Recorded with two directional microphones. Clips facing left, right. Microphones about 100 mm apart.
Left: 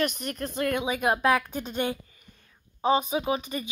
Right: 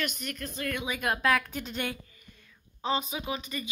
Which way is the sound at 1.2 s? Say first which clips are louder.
Left 1 dB; 20° left (ahead or behind).